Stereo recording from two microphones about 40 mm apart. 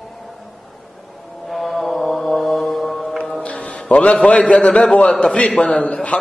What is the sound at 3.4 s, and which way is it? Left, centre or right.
Mantra, left.